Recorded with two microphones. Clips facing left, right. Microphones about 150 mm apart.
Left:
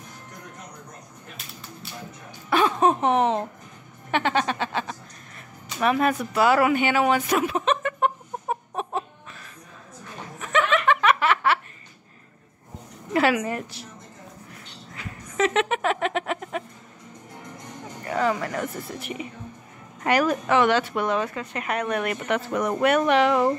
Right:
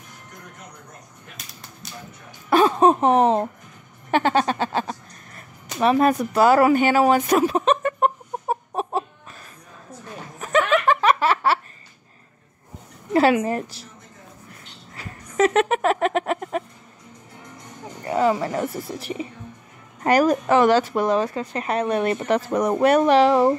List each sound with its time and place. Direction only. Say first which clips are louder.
1.3 s a sound: left 3 dB; 40° right (ahead or behind)
2.5 s speech: right 4 dB; 35° right (ahead or behind)
4.1 s music: right 4 dB; 40° right (ahead or behind)
10.4 s chuckle: right 3 dB; 40° right (ahead or behind)
13.1 s a woman's voice: right 4 dB; 30° right (ahead or behind)
15.0 s a sound: right 4 dB; 45° right (ahead or behind)
18.0 s a woman's voice: right 4 dB; 25° right (ahead or behind)